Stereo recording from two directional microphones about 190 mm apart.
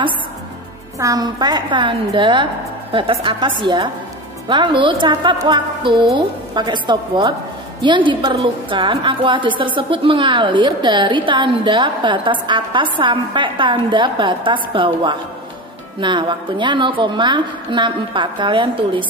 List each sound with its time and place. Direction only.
0.9 s a woman's voice: 20° right (ahead or behind)